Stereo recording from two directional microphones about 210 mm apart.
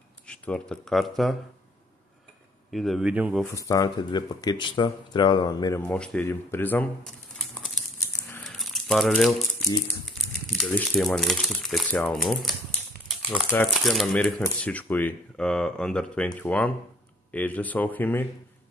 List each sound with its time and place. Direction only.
0.3 s speech: 5° left (ahead or behind)
2.7 s speech: centre (ahead or behind)
3.5 s speech: 15° left (ahead or behind)
8.3 s crumpling: 5° left (ahead or behind)
10.6 s speech: 5° left (ahead or behind)
13.1 s crumpling: centre (ahead or behind)
13.7 s speech: centre (ahead or behind)